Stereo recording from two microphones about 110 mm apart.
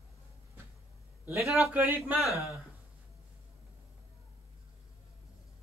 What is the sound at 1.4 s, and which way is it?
Speech, centre (ahead or behind).